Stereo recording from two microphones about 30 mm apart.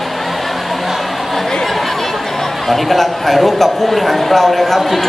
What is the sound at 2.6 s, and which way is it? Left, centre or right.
Speech, centre.